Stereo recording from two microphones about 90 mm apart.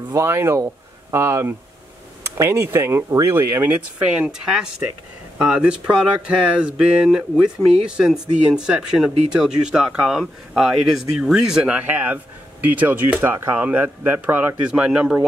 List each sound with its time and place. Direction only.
0.1 s speech: 30° right (ahead or behind); by 15.1 s 10° right (ahead or behind)